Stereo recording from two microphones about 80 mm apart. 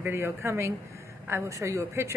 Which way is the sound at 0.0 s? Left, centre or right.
Right.